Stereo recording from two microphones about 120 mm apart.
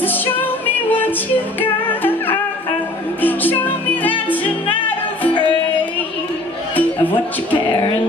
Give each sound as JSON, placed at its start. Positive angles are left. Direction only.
{"t": 0.0, "sound": "music", "side_deg": 15}
{"t": 6.7, "sound": "music", "side_deg": 15}